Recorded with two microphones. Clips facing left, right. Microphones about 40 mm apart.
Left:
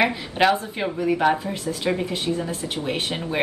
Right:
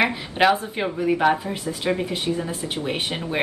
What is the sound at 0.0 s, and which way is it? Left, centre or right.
Speech, centre.